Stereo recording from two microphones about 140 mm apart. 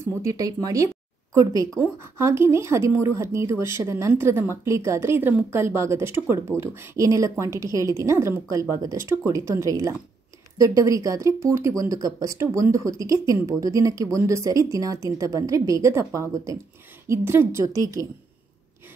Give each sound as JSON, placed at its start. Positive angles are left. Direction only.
{"t": 0.0, "sound": "speech", "side_deg": -20}